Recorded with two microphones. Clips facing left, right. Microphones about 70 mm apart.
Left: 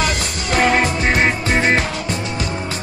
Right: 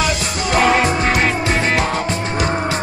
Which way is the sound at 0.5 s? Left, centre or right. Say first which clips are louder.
Right 2 dB; right.